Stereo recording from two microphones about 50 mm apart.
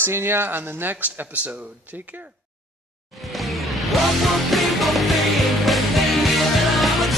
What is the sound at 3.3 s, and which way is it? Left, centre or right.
Music, centre.